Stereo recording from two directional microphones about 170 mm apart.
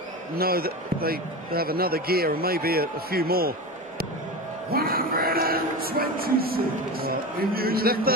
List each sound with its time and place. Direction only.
0.4 s speech: 60° right (ahead or behind)
4.6 s speech: 60° right (ahead or behind)